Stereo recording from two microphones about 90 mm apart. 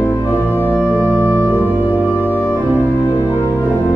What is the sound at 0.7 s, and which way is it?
Music, 15° right (ahead or behind).